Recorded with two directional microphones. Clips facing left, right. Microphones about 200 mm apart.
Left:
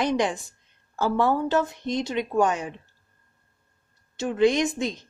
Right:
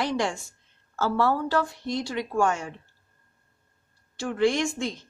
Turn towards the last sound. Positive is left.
turn(degrees=20)  # may be behind; listen again after turning